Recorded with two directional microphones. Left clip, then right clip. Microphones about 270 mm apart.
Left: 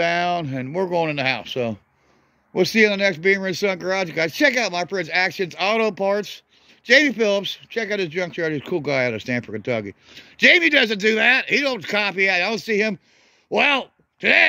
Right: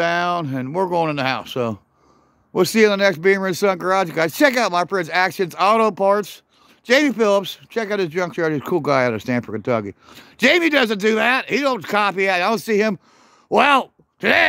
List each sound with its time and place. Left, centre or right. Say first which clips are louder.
0.0 s speech: right 1 dB; centre